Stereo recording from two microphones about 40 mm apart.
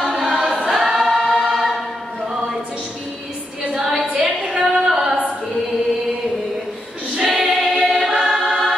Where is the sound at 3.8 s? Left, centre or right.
Centre.